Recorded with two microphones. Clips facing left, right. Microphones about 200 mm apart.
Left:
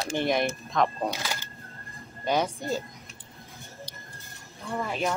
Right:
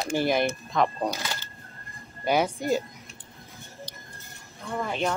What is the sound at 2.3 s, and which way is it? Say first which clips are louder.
Speech: right 3 dB; 10° right (ahead or behind).